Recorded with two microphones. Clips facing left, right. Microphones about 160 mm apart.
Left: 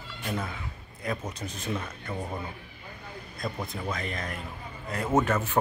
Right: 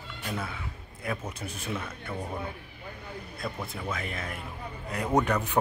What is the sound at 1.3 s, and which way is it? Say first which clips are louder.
Speech: left 2 dB; 10° right (ahead or behind).